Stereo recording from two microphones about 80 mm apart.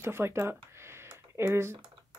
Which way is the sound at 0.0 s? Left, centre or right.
Right.